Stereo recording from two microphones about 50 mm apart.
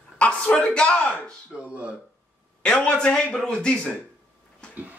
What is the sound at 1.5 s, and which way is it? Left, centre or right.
Speech, right.